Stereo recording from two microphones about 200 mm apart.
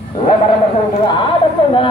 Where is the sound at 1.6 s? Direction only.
25° left (ahead or behind).